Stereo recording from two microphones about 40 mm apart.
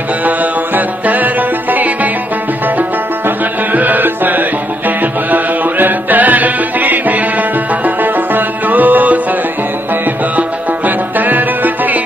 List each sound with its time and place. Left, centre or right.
0.2 s music: right
3.3 s music: right
11.1 s music: right